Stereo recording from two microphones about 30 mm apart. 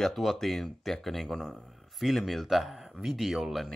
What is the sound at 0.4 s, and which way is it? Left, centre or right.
Speech, centre.